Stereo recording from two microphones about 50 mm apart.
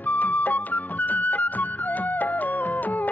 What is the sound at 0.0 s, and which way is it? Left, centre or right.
Music, left.